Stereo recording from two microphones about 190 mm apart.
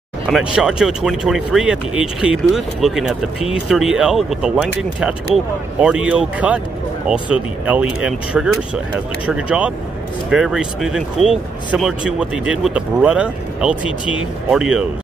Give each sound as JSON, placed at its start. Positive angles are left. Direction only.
{"t": 0.6, "sound": "speech", "side_deg": 0}